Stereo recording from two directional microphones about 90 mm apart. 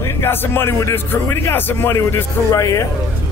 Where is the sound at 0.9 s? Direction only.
25° left (ahead or behind).